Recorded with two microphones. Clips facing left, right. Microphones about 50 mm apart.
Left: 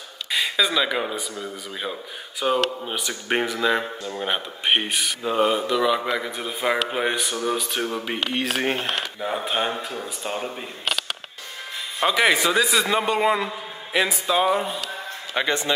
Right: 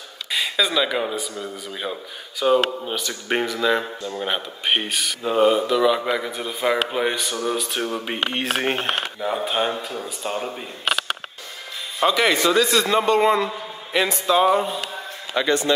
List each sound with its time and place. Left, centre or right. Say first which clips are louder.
0.3 s speech: even; centre
7.9 s speech: right 1 dB; centre
8.3 s speech: even; right
9.2 s speech: right 2 dB; centre
12.0 s speech: right 1 dB; centre
15.3 s a man's voice: right 3 dB; left